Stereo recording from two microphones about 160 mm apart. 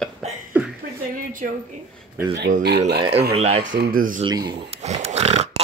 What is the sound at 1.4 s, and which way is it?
Speech, 55° right (ahead or behind).